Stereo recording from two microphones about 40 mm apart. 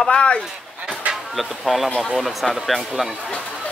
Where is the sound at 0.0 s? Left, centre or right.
Left.